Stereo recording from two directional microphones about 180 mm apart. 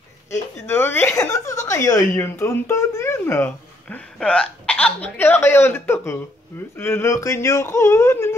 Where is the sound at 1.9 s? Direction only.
15° left (ahead or behind).